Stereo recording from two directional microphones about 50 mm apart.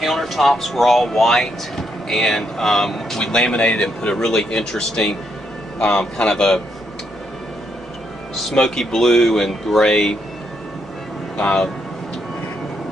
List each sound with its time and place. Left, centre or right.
0.0 s speech: centre
8.5 s speech: centre
11.3 s speech: centre